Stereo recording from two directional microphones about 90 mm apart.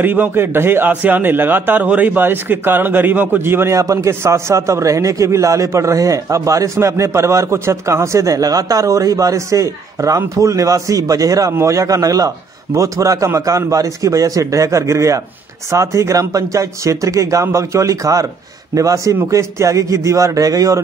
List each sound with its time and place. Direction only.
0.0 s a man's voice: 20° right (ahead or behind); by 20.8 s 40° right (ahead or behind)